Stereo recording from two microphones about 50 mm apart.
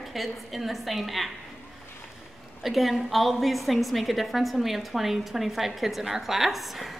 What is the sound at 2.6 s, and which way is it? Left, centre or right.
A woman's voice, centre.